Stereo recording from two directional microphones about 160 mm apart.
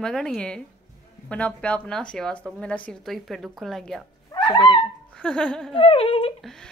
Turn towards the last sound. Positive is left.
turn(degrees=5)  # may be behind; listen again after turning